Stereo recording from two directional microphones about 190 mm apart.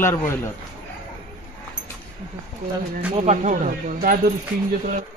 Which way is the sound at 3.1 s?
35° right (ahead or behind).